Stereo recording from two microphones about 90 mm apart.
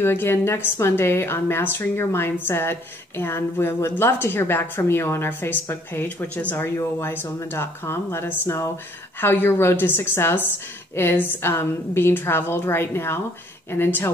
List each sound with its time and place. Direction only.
0.0 s a woman's voice: 25° left (ahead or behind)